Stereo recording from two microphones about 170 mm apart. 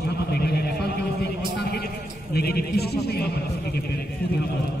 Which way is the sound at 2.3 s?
65° left (ahead or behind).